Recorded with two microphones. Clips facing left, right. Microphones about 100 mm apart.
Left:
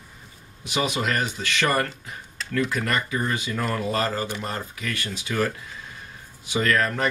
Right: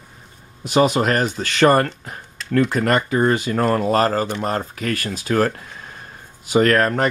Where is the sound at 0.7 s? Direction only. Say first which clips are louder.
Right 9 dB; 45° right (ahead or behind).